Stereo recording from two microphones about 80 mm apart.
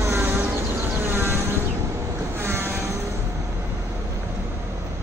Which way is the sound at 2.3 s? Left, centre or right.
Right.